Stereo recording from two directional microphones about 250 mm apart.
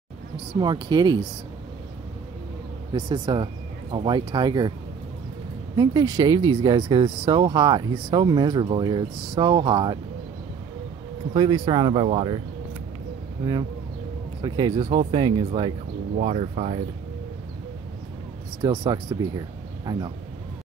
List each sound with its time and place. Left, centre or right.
0.6 s speech: centre
2.9 s speech: centre
5.8 s speech: centre
11.3 s speech: centre
14.4 s speech: centre
18.6 s speech: centre